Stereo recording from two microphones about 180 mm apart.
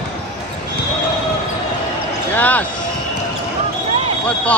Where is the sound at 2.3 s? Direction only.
10° left (ahead or behind).